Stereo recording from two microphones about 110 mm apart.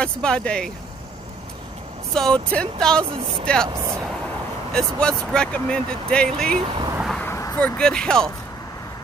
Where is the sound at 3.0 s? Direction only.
55° right (ahead or behind).